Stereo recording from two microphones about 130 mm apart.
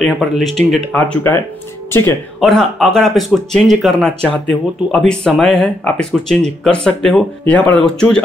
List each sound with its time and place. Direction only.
0.0 s speech: centre (ahead or behind)
0.9 s speech: 15° left (ahead or behind)
2.4 s speech: centre (ahead or behind)